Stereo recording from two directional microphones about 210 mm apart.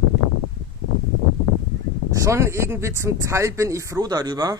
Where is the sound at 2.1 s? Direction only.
15° right (ahead or behind).